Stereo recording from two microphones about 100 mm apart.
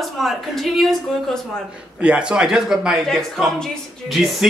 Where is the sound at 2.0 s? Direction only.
10° right (ahead or behind).